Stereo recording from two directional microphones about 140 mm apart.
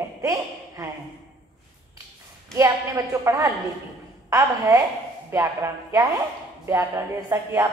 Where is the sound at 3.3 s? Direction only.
25° right (ahead or behind).